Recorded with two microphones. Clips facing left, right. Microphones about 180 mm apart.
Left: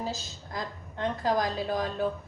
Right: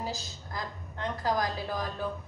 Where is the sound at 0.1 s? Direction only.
25° left (ahead or behind).